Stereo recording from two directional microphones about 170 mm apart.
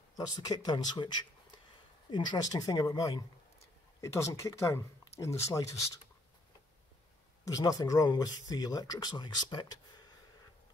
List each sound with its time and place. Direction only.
0.1 s speech: 25° left (ahead or behind)
7.4 s speech: 20° left (ahead or behind)